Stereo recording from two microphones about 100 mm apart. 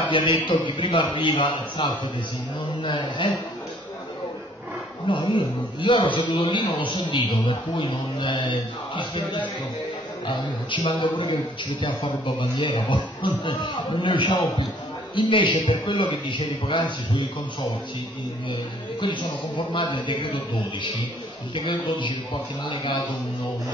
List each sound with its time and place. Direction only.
0.1 s a man's voice: 60° left (ahead or behind)
5.1 s a man's voice: 55° left (ahead or behind)
21.5 s a man's voice: 50° left (ahead or behind)